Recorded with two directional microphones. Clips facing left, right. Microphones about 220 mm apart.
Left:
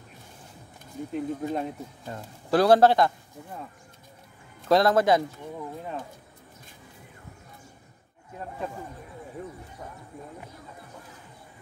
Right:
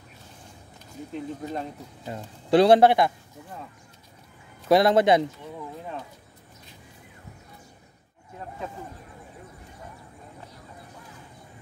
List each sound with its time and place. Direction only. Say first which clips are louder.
1.1 s speech: left 3 dB; 10° left (ahead or behind)
2.0 s speech: right 4 dB; 20° right (ahead or behind)
4.6 s speech: right 2 dB; 10° right (ahead or behind)
4.9 s speech: right 2 dB; 20° right (ahead or behind)